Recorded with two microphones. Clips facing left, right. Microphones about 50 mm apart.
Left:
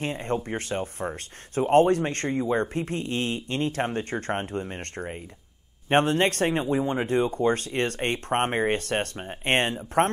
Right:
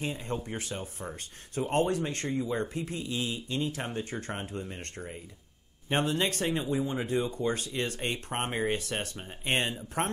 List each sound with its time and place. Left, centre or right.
0.0 s speech: left
2.2 s speech: left